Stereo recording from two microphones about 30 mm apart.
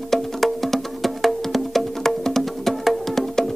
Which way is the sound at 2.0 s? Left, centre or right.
Centre.